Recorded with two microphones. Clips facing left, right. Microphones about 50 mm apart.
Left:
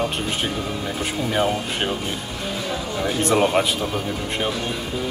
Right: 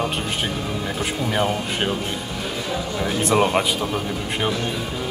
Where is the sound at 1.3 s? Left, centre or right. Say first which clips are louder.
Left 1 dB; centre.